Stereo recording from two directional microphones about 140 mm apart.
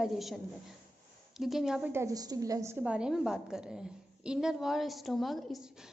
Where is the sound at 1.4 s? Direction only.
5° right (ahead or behind).